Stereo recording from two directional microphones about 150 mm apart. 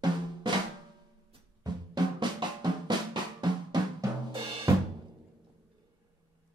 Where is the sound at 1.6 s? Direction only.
30° right (ahead or behind).